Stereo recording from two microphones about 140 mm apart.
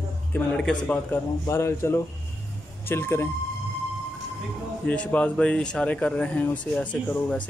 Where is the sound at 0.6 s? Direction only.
5° left (ahead or behind).